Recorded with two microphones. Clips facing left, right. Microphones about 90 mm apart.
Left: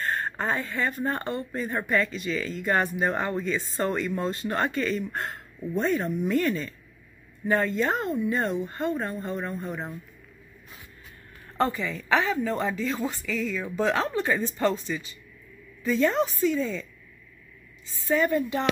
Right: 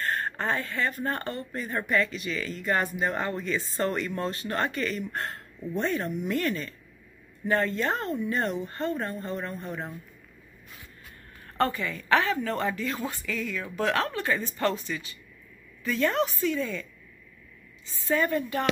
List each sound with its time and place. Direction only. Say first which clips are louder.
0.0 s speech: left 1 dB; 20° left (ahead or behind)
7.4 s speech: left 2 dB; 15° left (ahead or behind)
11.5 s speech: left 1 dB; 15° left (ahead or behind)
18.0 s speech: left 2 dB; 10° left (ahead or behind)